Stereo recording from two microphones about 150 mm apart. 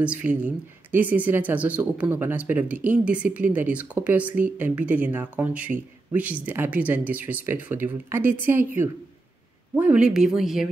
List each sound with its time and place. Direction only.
0.0 s speech: 10° right (ahead or behind)